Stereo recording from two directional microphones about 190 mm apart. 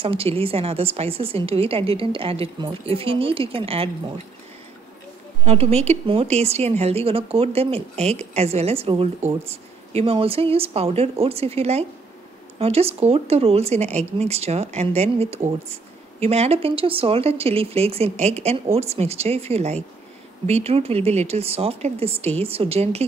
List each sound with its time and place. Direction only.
0.0 s a woman's voice: 30° right (ahead or behind)
5.4 s speech: 30° right (ahead or behind)